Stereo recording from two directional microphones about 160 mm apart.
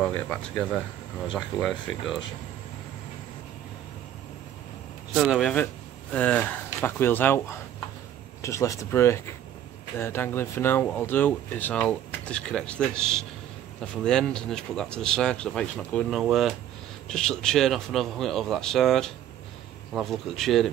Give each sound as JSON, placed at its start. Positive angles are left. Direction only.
{"t": 0.0, "sound": "speech", "side_deg": 5}
{"t": 5.1, "sound": "speech", "side_deg": -5}
{"t": 6.1, "sound": "speech", "side_deg": 10}